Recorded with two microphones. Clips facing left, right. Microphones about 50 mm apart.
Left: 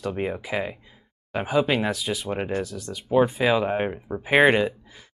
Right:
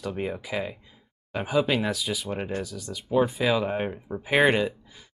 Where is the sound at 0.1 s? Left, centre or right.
Centre.